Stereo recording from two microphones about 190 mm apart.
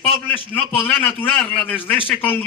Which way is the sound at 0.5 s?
10° left (ahead or behind).